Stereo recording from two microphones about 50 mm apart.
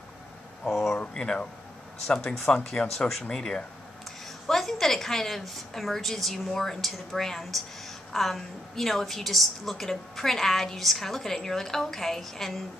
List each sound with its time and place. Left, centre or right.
0.7 s a sound: centre
0.9 s speech: centre
2.0 s a woman's voice: centre